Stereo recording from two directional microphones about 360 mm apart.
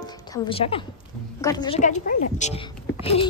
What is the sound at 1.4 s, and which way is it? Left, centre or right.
A woman's voice, centre.